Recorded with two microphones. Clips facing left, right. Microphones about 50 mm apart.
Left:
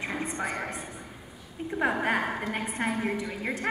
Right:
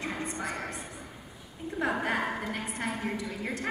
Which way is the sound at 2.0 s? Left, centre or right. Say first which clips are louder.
Left 3 dB; left.